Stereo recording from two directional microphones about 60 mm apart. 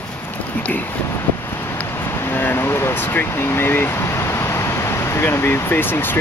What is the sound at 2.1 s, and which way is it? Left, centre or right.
Vehicle, left.